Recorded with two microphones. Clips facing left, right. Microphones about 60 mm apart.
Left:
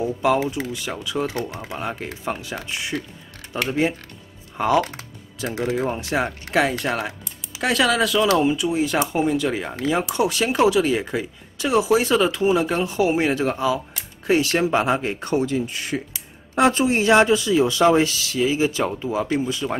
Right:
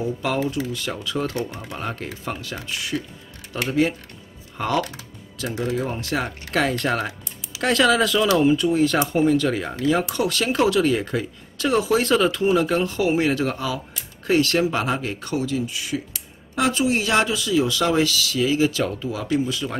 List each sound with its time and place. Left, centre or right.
0.0 s speech: centre
2.4 s speech: left